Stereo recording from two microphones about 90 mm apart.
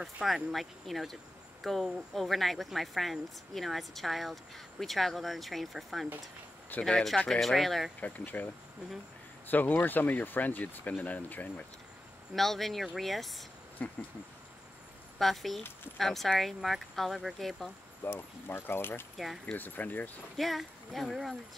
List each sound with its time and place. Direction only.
0.0 s speech: centre (ahead or behind)
8.0 s speech: 20° left (ahead or behind)
9.5 s speech: 20° left (ahead or behind)
12.4 s speech: centre (ahead or behind)
13.8 s speech: 20° left (ahead or behind)
15.1 s speech: centre (ahead or behind)
18.0 s speech: 25° left (ahead or behind)
19.1 s speech: centre (ahead or behind)
19.4 s speech: 20° left (ahead or behind)
20.3 s speech: centre (ahead or behind)